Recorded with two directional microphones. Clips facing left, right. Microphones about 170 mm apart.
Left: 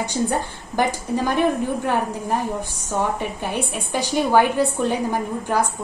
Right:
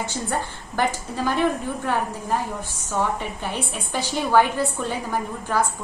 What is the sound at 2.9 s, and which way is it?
A woman's voice, 15° left (ahead or behind).